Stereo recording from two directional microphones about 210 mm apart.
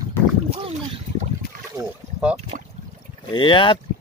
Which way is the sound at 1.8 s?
5° right (ahead or behind).